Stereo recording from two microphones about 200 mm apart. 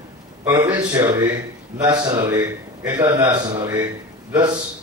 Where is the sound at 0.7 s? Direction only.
20° right (ahead or behind).